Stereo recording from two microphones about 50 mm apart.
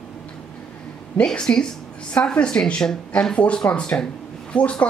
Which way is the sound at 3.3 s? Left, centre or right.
Left.